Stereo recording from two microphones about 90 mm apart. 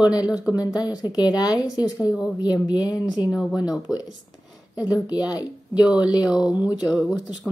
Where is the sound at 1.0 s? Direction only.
45° left (ahead or behind).